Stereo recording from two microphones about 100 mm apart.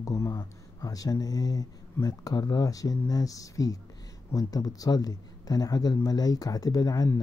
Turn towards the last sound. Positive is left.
turn(degrees=40)  # may be behind; listen again after turning